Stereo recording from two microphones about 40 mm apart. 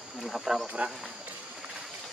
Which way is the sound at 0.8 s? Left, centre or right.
Right.